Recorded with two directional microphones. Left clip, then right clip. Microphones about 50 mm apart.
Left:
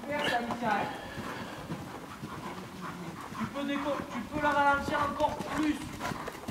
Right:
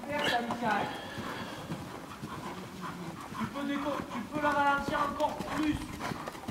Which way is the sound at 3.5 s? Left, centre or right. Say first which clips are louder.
Left 2 dB; left.